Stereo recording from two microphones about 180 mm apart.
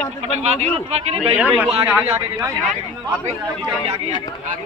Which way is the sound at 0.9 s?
35° right (ahead or behind).